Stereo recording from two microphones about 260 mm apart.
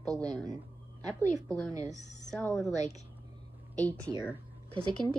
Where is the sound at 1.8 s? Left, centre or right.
Left.